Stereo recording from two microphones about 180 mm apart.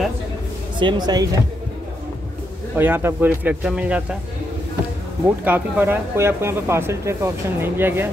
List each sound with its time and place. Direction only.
0.7 s speech: 25° right (ahead or behind)
2.7 s speech: 10° right (ahead or behind)
5.2 s speech: 10° right (ahead or behind)